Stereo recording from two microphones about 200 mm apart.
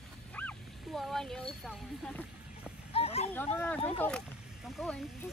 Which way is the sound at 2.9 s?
30° left (ahead or behind).